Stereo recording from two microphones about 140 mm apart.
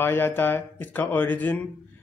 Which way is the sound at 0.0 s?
15° left (ahead or behind).